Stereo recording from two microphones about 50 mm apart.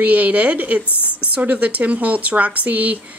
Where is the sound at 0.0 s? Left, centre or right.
Right.